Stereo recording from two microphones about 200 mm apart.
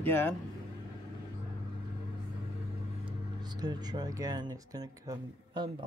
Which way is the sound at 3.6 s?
20° right (ahead or behind).